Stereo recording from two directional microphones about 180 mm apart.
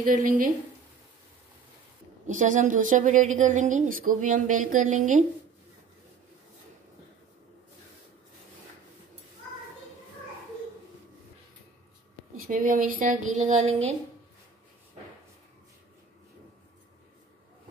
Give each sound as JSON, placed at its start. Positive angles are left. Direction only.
{"t": 0.0, "sound": "a woman's voice", "side_deg": -50}
{"t": 2.2, "sound": "a woman's voice", "side_deg": -45}
{"t": 12.4, "sound": "a woman's voice", "side_deg": -50}